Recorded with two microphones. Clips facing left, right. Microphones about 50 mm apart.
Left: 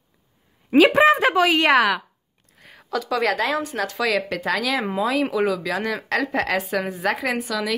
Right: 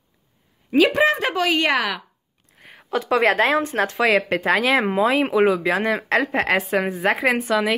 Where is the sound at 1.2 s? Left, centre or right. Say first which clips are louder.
Left 3 dB; centre.